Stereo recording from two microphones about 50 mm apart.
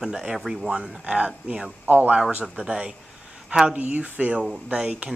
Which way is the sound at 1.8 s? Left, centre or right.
Right.